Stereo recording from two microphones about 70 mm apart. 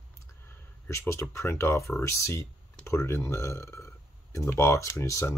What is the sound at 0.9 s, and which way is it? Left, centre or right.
Speech, left.